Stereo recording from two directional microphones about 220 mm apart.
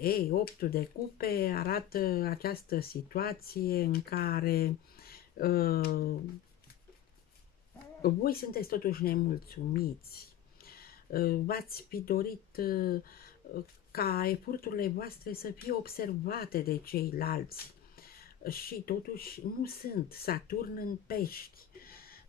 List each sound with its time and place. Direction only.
0.0 s speech: 40° left (ahead or behind)
8.0 s speech: 45° left (ahead or behind)